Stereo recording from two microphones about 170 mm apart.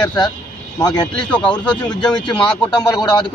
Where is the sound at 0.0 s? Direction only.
25° left (ahead or behind).